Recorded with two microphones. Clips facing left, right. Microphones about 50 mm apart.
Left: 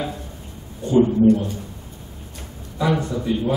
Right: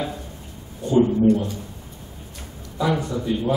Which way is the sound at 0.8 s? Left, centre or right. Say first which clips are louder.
Left 1 dB; centre.